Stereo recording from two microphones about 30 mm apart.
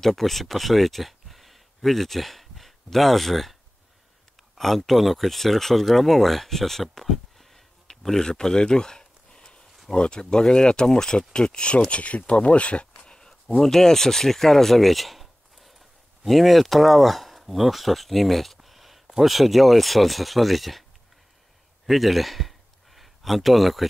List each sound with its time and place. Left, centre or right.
0.0 s speech: centre
4.6 s speech: centre
8.2 s a sound: left
9.9 s speech: left
11.9 s speech: left
13.6 s speech: centre
14.8 s a sound: centre
16.3 s speech: centre
21.8 s a sound: centre